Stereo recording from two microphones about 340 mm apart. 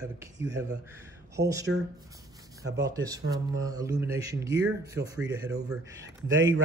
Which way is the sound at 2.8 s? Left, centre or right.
Centre.